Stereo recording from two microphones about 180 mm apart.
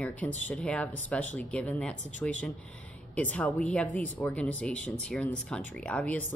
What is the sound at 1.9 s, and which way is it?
Speech, 45° left (ahead or behind).